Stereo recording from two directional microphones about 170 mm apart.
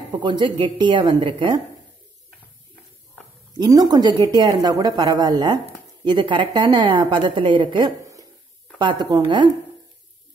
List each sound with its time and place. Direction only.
0.1 s a woman's voice: 25° right (ahead or behind)
3.5 s a woman's voice: 25° right (ahead or behind)